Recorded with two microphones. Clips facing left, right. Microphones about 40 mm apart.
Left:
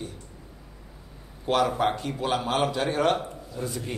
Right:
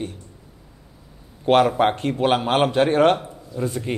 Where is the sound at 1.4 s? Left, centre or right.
Right.